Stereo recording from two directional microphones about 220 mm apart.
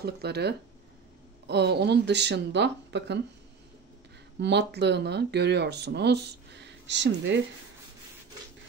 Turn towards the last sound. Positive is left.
turn(degrees=-55)  # may be behind; listen again after turning